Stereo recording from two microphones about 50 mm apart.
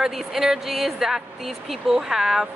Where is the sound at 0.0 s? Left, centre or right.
Centre.